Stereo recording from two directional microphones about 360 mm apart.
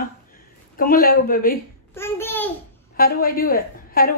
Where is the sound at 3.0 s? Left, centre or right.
Left.